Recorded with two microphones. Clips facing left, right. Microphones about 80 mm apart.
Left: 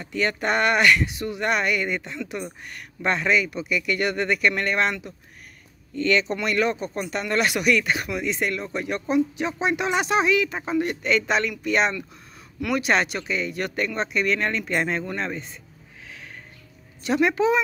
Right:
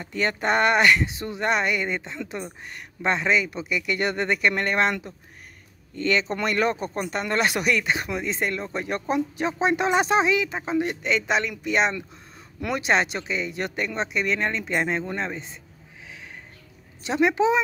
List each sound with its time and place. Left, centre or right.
0.0 s speech: right
5.9 s speech: right
12.5 s speech: right
17.0 s speech: right